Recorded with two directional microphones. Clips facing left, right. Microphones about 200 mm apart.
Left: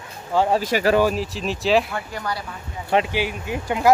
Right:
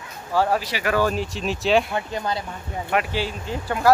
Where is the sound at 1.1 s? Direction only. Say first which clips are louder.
Even; centre (ahead or behind).